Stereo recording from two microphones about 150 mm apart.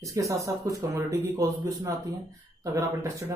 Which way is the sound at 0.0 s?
20° right (ahead or behind).